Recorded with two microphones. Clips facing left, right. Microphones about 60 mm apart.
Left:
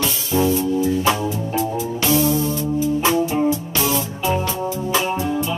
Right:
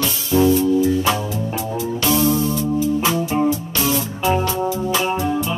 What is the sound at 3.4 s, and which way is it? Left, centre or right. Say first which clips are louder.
Music: even; left.